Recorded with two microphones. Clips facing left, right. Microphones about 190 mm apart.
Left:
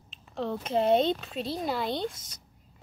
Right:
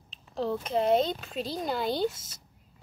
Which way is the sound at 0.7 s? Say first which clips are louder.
Left 1 dB; 25° left (ahead or behind).